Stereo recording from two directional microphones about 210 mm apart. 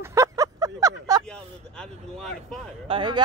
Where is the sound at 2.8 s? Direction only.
25° right (ahead or behind).